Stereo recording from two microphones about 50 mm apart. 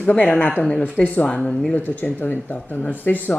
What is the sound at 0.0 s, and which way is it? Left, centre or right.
Speech, left.